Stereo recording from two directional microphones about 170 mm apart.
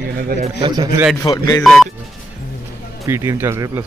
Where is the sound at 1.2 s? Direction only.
20° left (ahead or behind).